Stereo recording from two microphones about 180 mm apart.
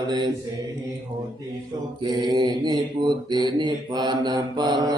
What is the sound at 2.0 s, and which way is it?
Mantra, 25° right (ahead or behind).